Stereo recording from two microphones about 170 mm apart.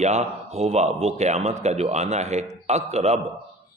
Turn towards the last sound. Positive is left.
turn(degrees=-40)  # may be behind; listen again after turning